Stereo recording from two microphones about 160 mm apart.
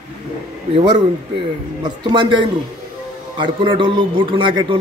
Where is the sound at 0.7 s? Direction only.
30° right (ahead or behind).